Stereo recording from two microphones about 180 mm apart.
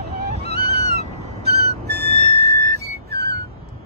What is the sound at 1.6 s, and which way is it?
Music, 65° right (ahead or behind).